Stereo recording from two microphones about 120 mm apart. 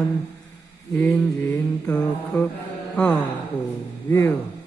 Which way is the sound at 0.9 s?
15° left (ahead or behind).